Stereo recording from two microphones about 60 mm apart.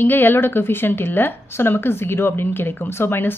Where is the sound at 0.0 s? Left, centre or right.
Left.